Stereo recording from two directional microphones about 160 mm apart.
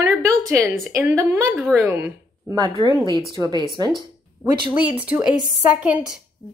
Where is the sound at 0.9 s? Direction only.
15° right (ahead or behind).